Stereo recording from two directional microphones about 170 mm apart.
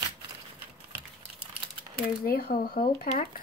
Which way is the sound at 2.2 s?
65° left (ahead or behind).